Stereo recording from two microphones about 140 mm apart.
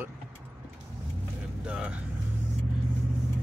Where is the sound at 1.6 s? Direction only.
10° right (ahead or behind).